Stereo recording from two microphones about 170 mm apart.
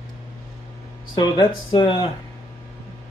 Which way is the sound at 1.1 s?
25° left (ahead or behind).